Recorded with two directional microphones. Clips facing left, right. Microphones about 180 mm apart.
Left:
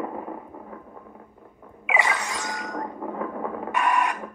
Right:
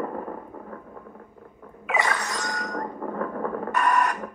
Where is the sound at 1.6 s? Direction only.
10° left (ahead or behind).